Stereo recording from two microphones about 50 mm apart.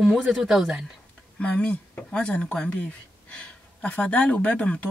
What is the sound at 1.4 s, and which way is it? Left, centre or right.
Speech, left.